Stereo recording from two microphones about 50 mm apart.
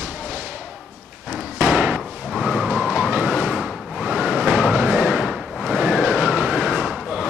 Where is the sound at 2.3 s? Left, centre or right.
Centre.